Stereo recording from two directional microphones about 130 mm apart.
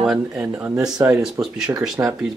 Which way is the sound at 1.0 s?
10° right (ahead or behind).